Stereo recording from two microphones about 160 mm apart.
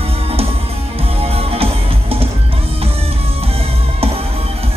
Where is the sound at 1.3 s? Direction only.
40° right (ahead or behind).